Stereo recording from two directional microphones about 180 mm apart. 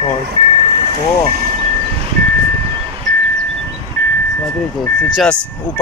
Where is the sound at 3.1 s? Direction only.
Centre (ahead or behind).